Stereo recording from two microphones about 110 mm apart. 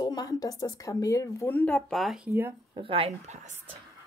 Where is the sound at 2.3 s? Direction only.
20° right (ahead or behind).